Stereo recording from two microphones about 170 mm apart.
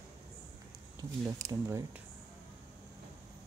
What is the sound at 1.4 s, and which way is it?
Speech, 20° right (ahead or behind).